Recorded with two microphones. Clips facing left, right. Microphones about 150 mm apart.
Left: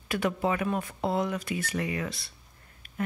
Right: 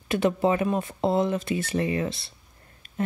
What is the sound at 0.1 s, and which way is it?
Speech, 25° right (ahead or behind).